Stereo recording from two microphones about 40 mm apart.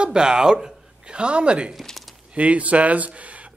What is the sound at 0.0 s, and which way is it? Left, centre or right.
A woman's voice, centre.